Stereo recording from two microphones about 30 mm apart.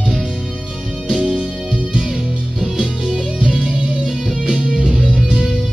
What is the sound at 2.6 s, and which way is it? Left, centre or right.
Music, centre.